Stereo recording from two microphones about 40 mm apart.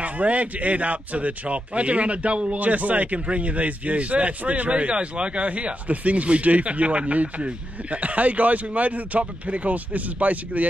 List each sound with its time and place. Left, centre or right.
0.0 s speech: right
2.6 s speech: right